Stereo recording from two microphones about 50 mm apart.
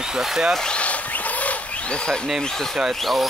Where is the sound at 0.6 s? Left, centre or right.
Left.